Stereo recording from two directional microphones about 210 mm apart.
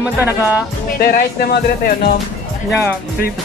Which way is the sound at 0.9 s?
45° left (ahead or behind).